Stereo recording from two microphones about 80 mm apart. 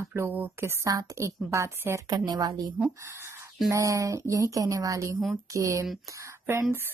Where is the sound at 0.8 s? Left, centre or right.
Right.